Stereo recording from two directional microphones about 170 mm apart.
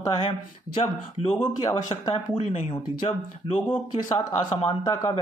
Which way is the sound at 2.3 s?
35° left (ahead or behind).